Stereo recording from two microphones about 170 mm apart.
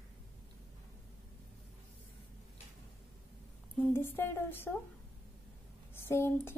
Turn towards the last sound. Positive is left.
turn(degrees=15)  # may be behind; listen again after turning